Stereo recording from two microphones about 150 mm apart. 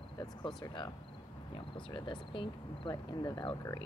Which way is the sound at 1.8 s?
35° left (ahead or behind).